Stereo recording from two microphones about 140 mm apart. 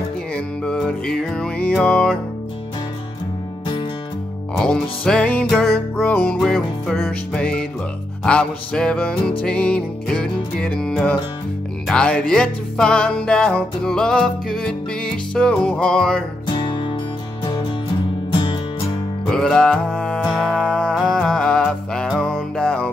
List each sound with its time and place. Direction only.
0.3 s music: 5° left (ahead or behind)
4.6 s music: 5° left (ahead or behind)
16.5 s music: 35° left (ahead or behind)
18.4 s music: 35° left (ahead or behind)
19.3 s music: 5° left (ahead or behind)